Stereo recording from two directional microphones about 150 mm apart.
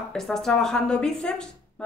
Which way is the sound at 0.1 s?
5° left (ahead or behind).